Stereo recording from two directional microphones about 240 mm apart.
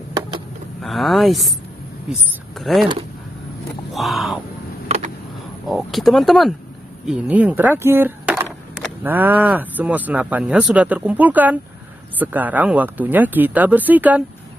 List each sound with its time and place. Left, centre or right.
0.8 s speech: centre
2.6 s speech: centre
3.9 s speech: centre
4.8 s a sound: right
5.7 s speech: centre